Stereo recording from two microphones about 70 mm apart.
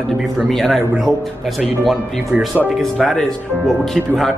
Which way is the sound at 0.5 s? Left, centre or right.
Centre.